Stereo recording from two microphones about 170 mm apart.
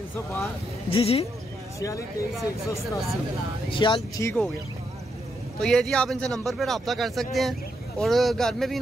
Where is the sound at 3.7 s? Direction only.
30° left (ahead or behind).